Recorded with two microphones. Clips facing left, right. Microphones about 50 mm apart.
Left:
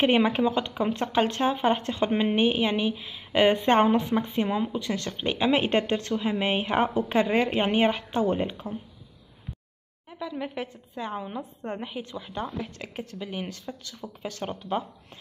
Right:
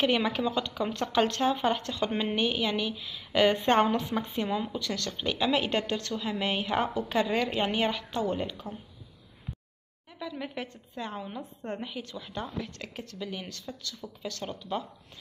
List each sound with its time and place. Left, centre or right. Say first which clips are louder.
0.0 s a woman's voice: left 5 dB; left
10.0 s a woman's voice: left 4 dB; centre